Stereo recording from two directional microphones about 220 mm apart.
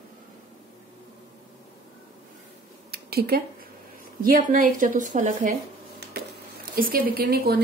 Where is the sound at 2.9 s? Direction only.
45° right (ahead or behind).